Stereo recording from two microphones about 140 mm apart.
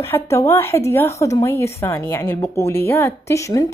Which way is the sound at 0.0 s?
20° left (ahead or behind).